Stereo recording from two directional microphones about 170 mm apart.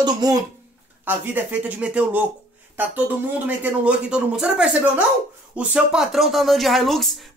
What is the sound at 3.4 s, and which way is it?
Speech, 5° right (ahead or behind).